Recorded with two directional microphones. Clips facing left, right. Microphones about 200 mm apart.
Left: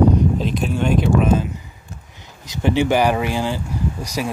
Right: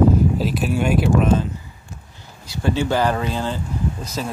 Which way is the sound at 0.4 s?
5° right (ahead or behind).